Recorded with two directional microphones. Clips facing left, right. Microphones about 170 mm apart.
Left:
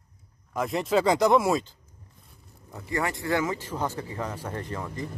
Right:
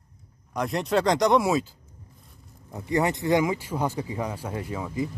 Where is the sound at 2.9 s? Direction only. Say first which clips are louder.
Right 5 dB; 20° right (ahead or behind).